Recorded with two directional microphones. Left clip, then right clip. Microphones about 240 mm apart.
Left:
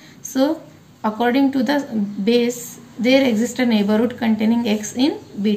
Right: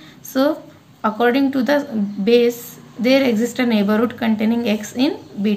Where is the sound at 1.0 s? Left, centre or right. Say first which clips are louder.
Right 1 dB; centre.